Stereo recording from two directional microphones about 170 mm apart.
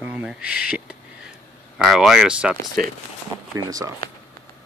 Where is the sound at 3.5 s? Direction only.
20° right (ahead or behind).